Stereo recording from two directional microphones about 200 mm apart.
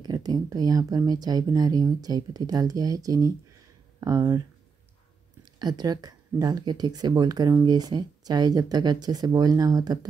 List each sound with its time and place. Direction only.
0.0 s speech: 20° right (ahead or behind)
5.4 s speech: 20° right (ahead or behind)